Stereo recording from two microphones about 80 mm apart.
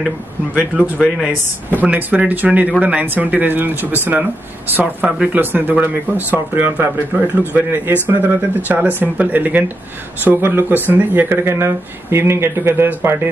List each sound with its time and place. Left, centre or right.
0.6 s speech: centre
1.0 s speech: centre
1.8 s speech: right